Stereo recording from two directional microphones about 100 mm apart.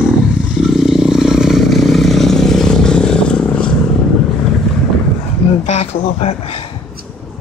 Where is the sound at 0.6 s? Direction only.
Centre (ahead or behind).